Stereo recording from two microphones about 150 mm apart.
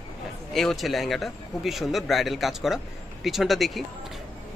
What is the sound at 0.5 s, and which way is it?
Speech, centre (ahead or behind).